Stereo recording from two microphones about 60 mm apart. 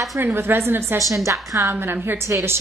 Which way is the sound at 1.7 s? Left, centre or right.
Right.